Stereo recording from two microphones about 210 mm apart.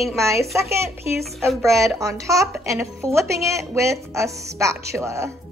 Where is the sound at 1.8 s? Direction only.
15° right (ahead or behind).